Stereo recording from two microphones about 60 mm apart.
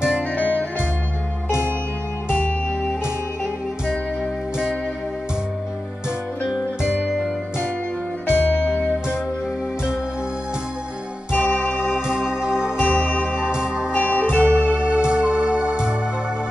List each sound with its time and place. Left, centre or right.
0.3 s music: left
6.8 s music: centre
8.3 s music: left
11.3 s organ: left
12.1 s music: centre
12.8 s music: left
13.3 s music: centre
13.9 s music: left
14.7 s music: centre